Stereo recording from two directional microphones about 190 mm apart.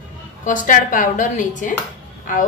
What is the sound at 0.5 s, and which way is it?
A woman's voice, 45° left (ahead or behind).